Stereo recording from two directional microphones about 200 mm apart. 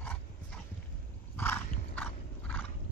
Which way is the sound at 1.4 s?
10° left (ahead or behind).